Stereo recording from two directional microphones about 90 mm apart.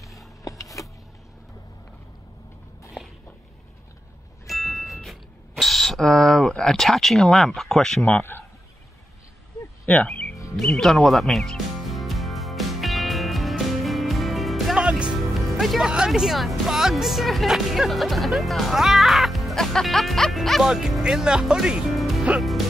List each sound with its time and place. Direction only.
0.4 s a sound: 40° left (ahead or behind)
4.5 s a sound: centre (ahead or behind)
8.0 s speech: 20° left (ahead or behind)
9.8 s speech: 15° left (ahead or behind)
10.5 s music: 5° left (ahead or behind)
14.8 s speech: 10° right (ahead or behind)
21.8 s music: centre (ahead or behind)